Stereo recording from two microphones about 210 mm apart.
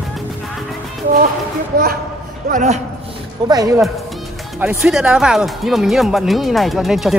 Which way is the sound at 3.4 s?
15° right (ahead or behind).